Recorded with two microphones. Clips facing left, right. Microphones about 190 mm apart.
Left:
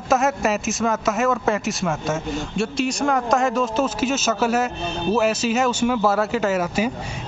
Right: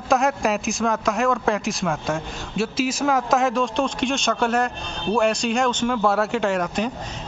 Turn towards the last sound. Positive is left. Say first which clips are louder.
# left 2 dB
turn(degrees=5)  # may be behind; listen again after turning